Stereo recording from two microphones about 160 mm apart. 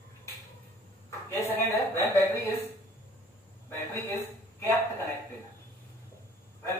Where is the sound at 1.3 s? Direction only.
15° left (ahead or behind).